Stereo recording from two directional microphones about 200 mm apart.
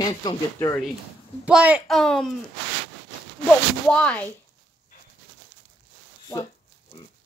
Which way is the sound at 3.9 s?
5° left (ahead or behind).